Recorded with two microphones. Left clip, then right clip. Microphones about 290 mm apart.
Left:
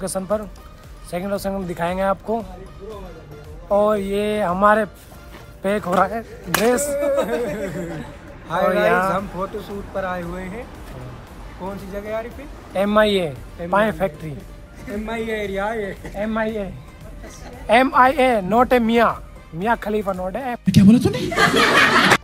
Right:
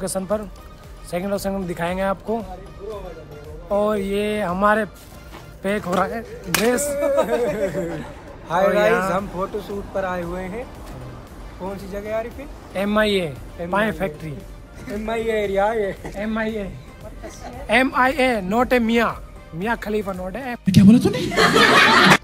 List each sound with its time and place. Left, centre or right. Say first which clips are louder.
0.0 s speech: left 1 dB; centre
3.6 s speech: left 3 dB; centre
7.1 s speech: right 5 dB; centre
11.6 s speech: even; centre
14.9 s speech: right 2 dB; centre
16.2 s speech: left 3 dB; centre
17.6 s speech: left 4 dB; centre